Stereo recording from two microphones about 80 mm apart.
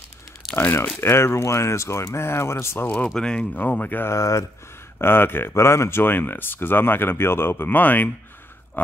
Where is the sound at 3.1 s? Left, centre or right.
Centre.